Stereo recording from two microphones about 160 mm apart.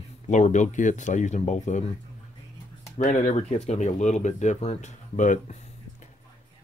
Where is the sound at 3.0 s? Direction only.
50° left (ahead or behind).